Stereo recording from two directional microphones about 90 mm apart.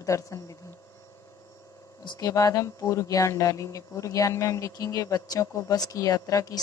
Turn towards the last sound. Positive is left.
turn(degrees=40)  # may be behind; listen again after turning